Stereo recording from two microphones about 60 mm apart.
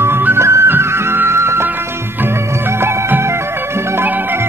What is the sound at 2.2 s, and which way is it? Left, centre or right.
Music of bollywood, right.